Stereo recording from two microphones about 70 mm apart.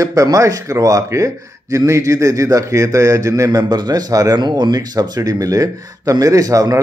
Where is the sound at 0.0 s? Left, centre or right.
Right.